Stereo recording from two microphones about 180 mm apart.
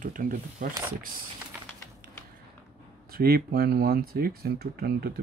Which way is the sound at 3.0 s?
55° right (ahead or behind).